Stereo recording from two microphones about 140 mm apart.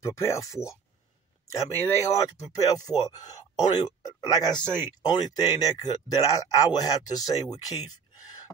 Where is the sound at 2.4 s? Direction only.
25° left (ahead or behind).